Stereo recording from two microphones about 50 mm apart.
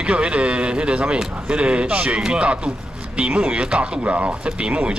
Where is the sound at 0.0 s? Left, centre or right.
Right.